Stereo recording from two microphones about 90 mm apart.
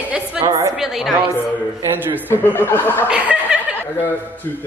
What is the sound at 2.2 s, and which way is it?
Speech, 25° left (ahead or behind).